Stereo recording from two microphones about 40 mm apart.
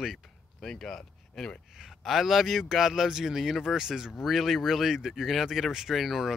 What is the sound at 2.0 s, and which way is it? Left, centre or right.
Speech, centre.